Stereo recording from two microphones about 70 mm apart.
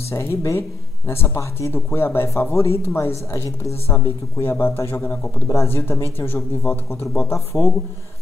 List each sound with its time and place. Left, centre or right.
0.1 s a woman's voice: left
5.5 s a woman's voice: left